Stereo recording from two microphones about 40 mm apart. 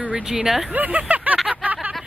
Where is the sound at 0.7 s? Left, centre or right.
Right.